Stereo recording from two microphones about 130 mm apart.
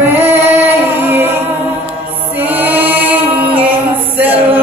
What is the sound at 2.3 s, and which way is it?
A capella, 15° right (ahead or behind).